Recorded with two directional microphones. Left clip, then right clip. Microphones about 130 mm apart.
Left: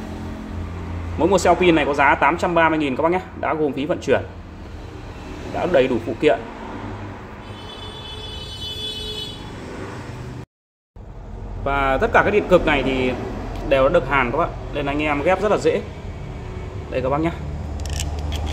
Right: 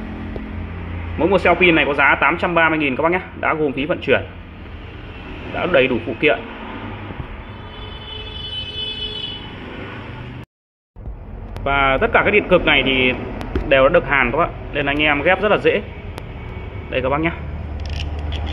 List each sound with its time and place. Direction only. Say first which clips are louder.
1.1 s speech: right 1 dB; 5° left (ahead or behind)
5.5 s speech: right 2 dB; 5° left (ahead or behind)
11.6 s speech: right 3 dB; 15° left (ahead or behind)
16.9 s speech: right 2 dB; 10° left (ahead or behind)